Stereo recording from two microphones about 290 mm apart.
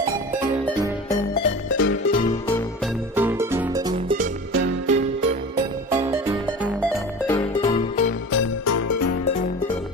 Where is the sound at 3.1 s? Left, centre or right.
Centre; by 4.6 s right.